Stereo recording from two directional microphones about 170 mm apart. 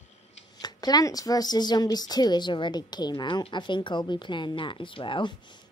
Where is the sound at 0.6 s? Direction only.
25° left (ahead or behind).